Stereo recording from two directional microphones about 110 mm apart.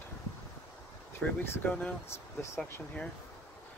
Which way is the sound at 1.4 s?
20° left (ahead or behind).